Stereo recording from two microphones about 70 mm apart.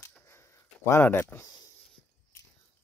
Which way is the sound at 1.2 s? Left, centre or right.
Left.